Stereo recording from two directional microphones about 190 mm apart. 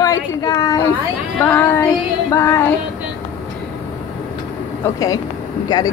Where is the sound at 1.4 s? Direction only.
10° left (ahead or behind).